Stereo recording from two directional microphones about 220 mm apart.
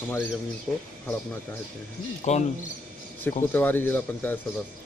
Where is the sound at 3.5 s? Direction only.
10° left (ahead or behind).